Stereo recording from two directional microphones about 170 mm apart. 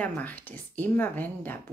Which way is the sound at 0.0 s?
10° left (ahead or behind).